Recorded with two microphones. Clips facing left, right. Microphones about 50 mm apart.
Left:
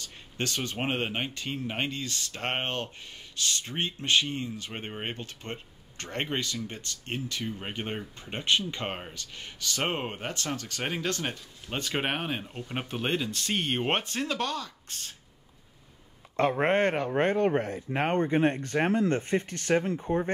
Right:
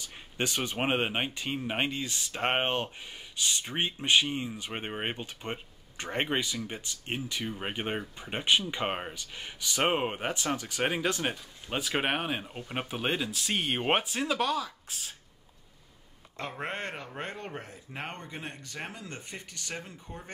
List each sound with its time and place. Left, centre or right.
0.0 s speech: centre
16.3 s speech: left